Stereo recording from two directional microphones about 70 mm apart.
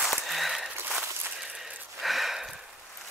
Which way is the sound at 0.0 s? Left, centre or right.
Centre.